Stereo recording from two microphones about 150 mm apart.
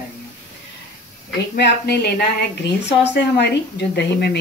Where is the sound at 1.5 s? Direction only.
90° left.